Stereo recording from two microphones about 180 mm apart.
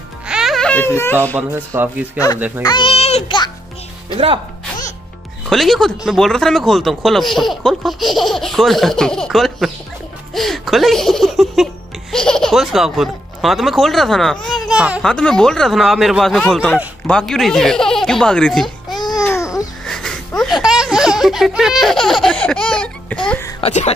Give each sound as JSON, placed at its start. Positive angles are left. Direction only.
{"t": 0.3, "sound": "a sound", "side_deg": 0}
{"t": 1.5, "sound": "speech", "side_deg": -10}
{"t": 2.6, "sound": "a child's voice", "side_deg": 25}
{"t": 4.1, "sound": "speech", "side_deg": -30}
{"t": 5.5, "sound": "speech", "side_deg": 0}
{"t": 19.1, "sound": "babbling", "side_deg": 15}
{"t": 19.9, "sound": "a sound", "side_deg": 0}
{"t": 23.6, "sound": "cough", "side_deg": 40}